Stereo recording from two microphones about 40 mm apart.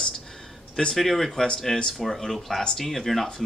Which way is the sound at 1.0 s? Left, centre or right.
Centre.